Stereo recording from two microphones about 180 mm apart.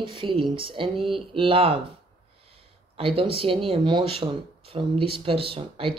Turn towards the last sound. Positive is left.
turn(degrees=-30)  # may be behind; listen again after turning